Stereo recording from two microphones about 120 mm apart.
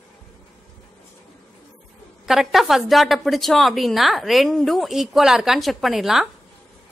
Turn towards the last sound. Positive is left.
turn(degrees=0)  # may be behind; listen again after turning